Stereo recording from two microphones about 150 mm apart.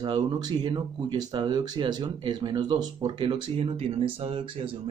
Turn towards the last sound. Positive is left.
turn(degrees=-40)  # may be behind; listen again after turning